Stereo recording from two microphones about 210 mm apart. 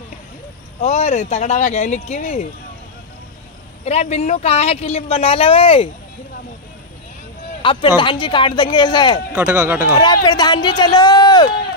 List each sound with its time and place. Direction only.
0.7 s speech: 35° left (ahead or behind)
3.8 s speech: 30° left (ahead or behind)
7.6 s speech: 25° left (ahead or behind)
9.3 s speech: 5° right (ahead or behind)
9.9 s speech: 20° left (ahead or behind)